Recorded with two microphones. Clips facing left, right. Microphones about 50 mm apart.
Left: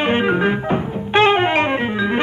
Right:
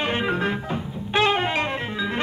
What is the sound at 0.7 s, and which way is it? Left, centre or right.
Music, left.